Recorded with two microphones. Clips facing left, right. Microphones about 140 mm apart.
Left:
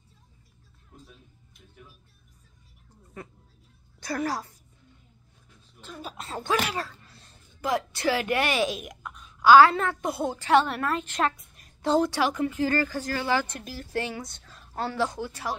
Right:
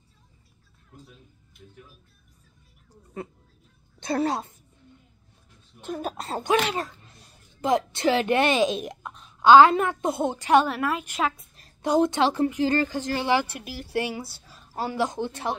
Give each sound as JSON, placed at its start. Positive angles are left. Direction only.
{"t": 4.0, "sound": "a woman's voice", "side_deg": -25}
{"t": 5.8, "sound": "speech", "side_deg": -50}
{"t": 6.4, "sound": "a woman's voice", "side_deg": -20}
{"t": 10.7, "sound": "a woman's voice", "side_deg": -5}
{"t": 11.3, "sound": "a sound", "side_deg": -30}
{"t": 11.8, "sound": "a woman's voice", "side_deg": -15}